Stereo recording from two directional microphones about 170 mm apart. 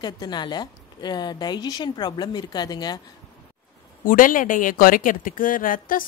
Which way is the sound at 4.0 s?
55° left (ahead or behind).